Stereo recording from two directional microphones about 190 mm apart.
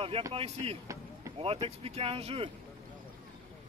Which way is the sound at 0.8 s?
15° right (ahead or behind).